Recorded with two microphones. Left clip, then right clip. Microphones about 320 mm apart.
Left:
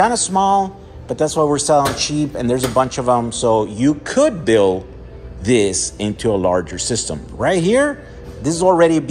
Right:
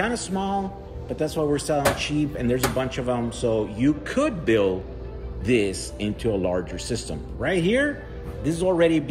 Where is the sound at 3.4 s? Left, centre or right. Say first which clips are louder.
Left 8 dB; left.